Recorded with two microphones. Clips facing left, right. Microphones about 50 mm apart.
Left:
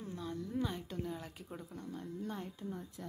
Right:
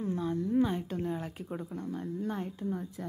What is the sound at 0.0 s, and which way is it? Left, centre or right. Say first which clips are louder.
A woman's voice: right 10 dB; right.